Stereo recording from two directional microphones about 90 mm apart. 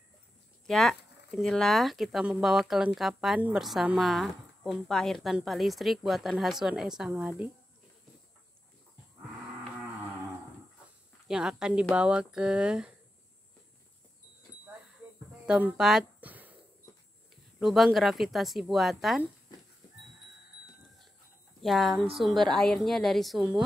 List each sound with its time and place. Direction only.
0.7 s a woman's voice: 5° left (ahead or behind)
11.2 s speech: 5° right (ahead or behind)
15.4 s speech: 10° right (ahead or behind)
16.2 s a sound: 20° right (ahead or behind)
17.6 s a woman's voice: 5° right (ahead or behind)
21.5 s a woman's voice: centre (ahead or behind)